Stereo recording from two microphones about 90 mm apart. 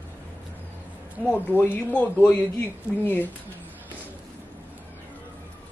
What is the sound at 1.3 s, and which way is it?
Speech, 20° left (ahead or behind).